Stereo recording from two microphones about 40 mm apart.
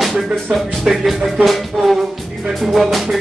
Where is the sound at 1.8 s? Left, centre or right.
Centre.